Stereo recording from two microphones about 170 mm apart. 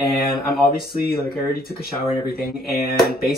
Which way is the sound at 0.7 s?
65° left (ahead or behind).